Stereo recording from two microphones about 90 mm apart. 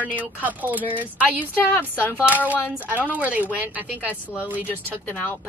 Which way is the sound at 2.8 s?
20° right (ahead or behind).